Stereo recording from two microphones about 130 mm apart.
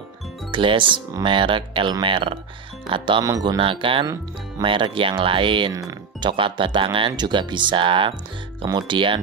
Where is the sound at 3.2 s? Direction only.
25° right (ahead or behind).